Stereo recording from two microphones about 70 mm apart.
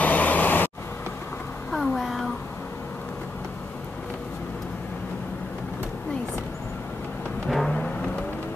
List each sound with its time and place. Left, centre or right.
0.0 s vehicle: left
1.7 s a sound: centre
7.4 s timpani: centre